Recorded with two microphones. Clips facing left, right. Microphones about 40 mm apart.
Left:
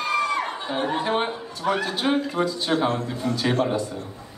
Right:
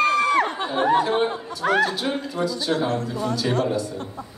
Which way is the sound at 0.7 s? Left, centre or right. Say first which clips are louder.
Right 7 dB; right.